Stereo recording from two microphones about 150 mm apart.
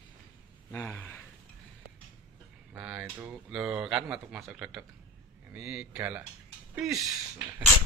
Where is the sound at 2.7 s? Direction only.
5° right (ahead or behind).